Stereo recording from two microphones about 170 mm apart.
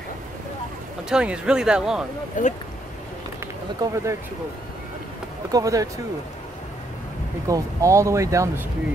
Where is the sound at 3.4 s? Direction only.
15° right (ahead or behind).